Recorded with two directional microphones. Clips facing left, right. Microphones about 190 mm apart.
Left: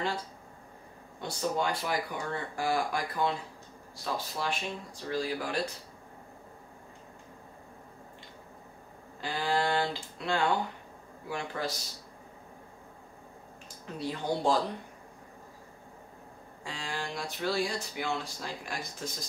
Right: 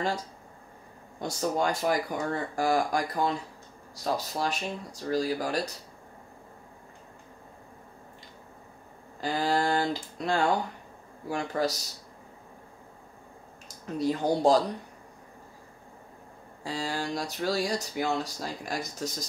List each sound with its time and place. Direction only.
1.2 s speech: 45° right (ahead or behind)
9.2 s speech: 40° right (ahead or behind)
13.9 s speech: 40° right (ahead or behind)
16.6 s speech: 35° right (ahead or behind)